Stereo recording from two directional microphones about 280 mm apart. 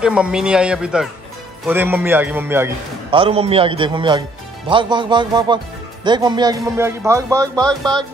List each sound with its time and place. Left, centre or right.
0.0 s a man's voice: centre
3.1 s a man's voice: centre
7.9 s a man's voice: centre